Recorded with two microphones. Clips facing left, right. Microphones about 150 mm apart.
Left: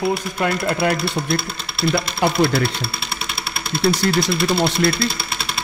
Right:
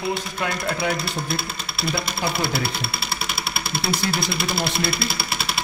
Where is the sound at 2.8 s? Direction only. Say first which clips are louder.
Even; 5° right (ahead or behind).